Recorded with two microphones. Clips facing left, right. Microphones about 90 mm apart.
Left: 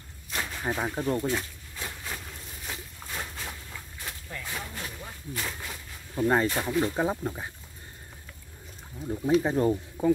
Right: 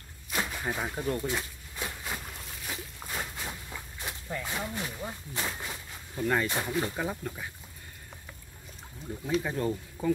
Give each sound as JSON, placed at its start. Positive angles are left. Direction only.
{"t": 0.3, "sound": "a sound", "side_deg": -10}
{"t": 0.7, "sound": "speech", "side_deg": 10}
{"t": 1.2, "sound": "a sound", "side_deg": -15}
{"t": 5.0, "sound": "speech", "side_deg": -20}
{"t": 6.1, "sound": "speech", "side_deg": 25}
{"t": 9.1, "sound": "speech", "side_deg": 25}